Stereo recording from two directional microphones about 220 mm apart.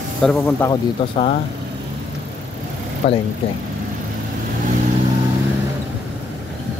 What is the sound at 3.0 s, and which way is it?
Speech, 30° left (ahead or behind).